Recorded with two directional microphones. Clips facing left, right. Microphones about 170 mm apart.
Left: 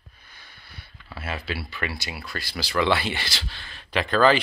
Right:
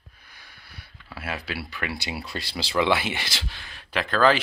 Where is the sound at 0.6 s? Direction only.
10° right (ahead or behind).